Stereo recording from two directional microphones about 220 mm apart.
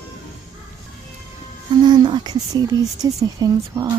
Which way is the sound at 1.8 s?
20° right (ahead or behind).